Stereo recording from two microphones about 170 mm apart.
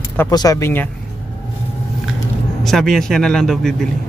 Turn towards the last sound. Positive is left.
turn(degrees=0)  # may be behind; listen again after turning